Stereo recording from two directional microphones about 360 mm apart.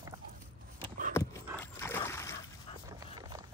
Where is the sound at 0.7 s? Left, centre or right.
Centre.